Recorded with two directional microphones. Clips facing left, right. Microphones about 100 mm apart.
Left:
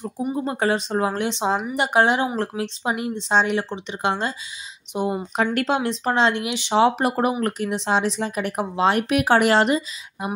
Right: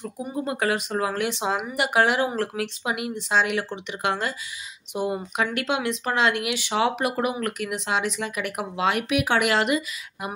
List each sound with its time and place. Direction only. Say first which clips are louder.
0.0 s speech: left 6 dB; 20° left (ahead or behind)
0.5 s a woman's voice: left 1 dB; 30° left (ahead or behind)